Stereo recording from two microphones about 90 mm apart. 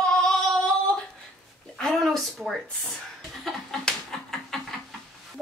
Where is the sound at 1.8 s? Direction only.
5° left (ahead or behind).